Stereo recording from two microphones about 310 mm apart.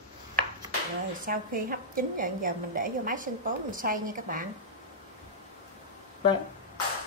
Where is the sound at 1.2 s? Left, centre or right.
Right.